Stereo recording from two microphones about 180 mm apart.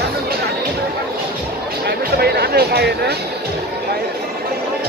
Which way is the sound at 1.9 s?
60° right (ahead or behind).